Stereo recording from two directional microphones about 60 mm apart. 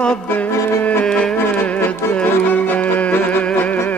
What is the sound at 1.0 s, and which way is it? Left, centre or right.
Music, centre.